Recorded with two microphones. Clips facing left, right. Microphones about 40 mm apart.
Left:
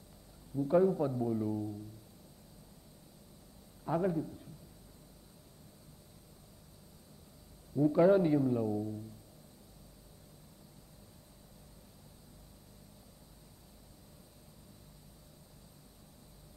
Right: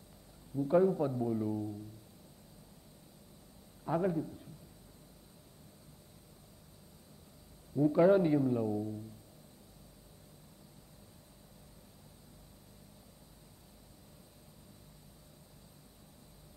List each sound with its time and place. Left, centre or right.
0.7 s a man's voice: centre
3.8 s a man's voice: centre
7.7 s a man's voice: right